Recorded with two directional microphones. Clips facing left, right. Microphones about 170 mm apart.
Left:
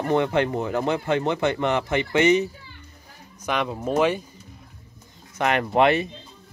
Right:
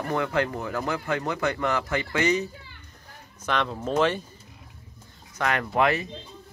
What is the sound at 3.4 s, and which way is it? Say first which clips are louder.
Speech: left 2 dB; 10° left (ahead or behind).